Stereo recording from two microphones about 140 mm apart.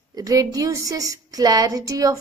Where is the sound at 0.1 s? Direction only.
25° right (ahead or behind).